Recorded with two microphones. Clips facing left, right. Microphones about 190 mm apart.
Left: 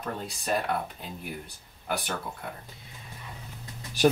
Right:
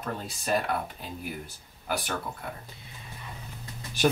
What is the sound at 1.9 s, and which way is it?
Speech, centre (ahead or behind).